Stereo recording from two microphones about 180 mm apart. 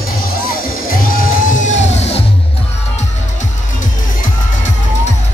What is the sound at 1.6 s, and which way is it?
Music, 40° left (ahead or behind).